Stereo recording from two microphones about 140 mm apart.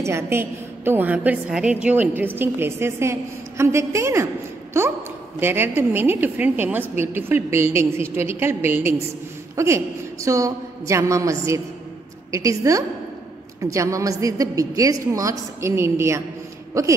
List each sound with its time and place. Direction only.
0.0 s a woman's voice: 20° right (ahead or behind)